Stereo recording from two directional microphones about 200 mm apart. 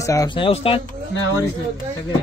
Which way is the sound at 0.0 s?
15° left (ahead or behind).